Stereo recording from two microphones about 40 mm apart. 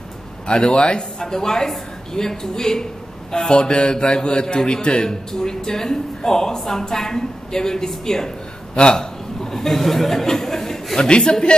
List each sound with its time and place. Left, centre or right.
0.5 s a woman's voice: left; by 11.0 s centre
11.0 s speech: left